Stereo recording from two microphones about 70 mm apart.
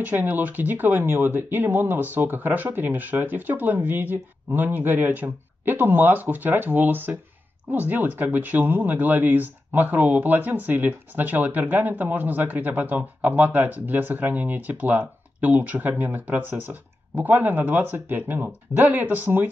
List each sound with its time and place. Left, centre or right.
0.0 s speech: right